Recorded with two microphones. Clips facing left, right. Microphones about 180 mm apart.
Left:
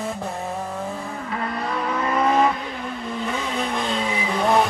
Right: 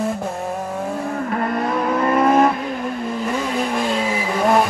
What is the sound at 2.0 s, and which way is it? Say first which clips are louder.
Vehicle: right 4 dB; 55° right (ahead or behind).